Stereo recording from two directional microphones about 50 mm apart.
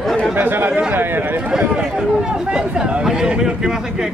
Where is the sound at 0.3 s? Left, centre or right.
Right.